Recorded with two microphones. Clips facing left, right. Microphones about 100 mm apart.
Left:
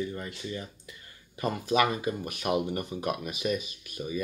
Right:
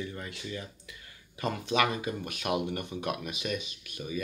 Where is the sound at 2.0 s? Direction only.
35° left (ahead or behind).